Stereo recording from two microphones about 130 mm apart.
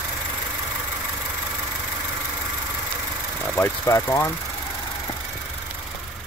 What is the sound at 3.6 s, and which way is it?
Speech, 20° left (ahead or behind).